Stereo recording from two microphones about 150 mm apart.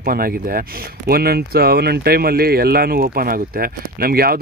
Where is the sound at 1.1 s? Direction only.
90° right.